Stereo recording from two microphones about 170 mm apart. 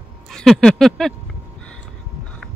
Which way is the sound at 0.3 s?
5° left (ahead or behind).